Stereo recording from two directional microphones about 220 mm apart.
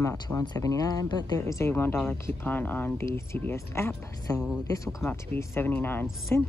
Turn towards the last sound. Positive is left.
turn(degrees=10)  # may be behind; listen again after turning